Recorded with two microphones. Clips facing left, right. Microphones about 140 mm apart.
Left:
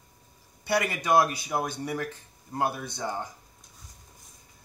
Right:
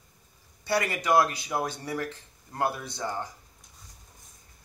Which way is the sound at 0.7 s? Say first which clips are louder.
Even; 15° left (ahead or behind).